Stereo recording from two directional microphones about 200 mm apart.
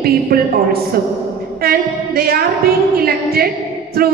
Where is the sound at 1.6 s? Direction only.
50° right (ahead or behind).